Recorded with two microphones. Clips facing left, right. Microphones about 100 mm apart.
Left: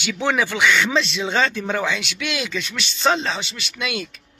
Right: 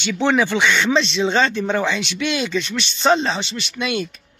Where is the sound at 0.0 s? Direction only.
5° left (ahead or behind).